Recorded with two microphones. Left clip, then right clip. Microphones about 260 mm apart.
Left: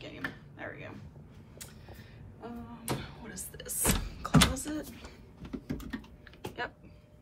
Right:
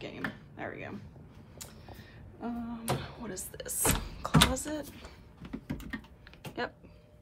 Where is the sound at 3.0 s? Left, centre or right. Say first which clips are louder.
Right 3 dB; centre.